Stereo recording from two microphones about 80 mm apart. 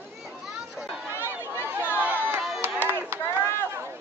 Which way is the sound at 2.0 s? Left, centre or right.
Right.